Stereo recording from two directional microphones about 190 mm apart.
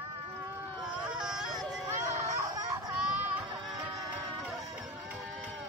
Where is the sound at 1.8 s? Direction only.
15° right (ahead or behind).